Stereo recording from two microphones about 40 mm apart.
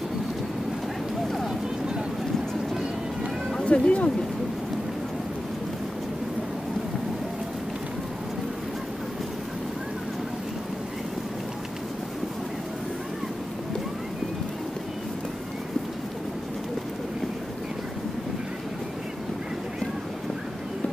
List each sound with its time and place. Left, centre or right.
3.6 s speech: left